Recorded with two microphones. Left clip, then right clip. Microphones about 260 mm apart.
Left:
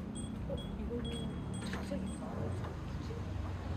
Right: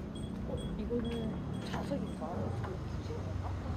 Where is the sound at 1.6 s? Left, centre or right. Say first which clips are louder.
Right 4 dB; right.